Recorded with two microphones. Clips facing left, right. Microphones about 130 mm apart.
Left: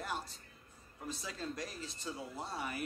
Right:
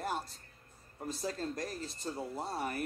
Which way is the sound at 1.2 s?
45° right (ahead or behind).